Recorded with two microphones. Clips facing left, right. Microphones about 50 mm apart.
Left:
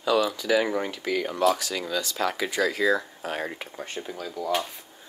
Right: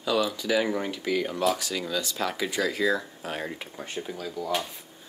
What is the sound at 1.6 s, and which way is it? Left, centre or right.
Speech, left.